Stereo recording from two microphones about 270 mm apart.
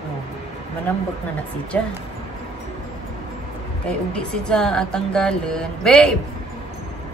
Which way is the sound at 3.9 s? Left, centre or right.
Centre.